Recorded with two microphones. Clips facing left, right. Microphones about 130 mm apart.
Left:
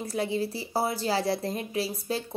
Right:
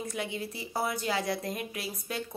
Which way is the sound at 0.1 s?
35° left (ahead or behind).